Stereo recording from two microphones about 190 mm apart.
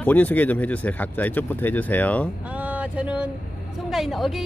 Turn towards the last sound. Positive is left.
turn(degrees=0)  # may be behind; listen again after turning